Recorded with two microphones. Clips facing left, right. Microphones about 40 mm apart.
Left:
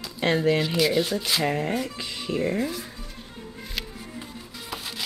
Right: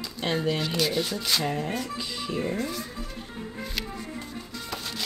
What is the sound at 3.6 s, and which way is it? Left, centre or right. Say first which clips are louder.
Music: even; centre.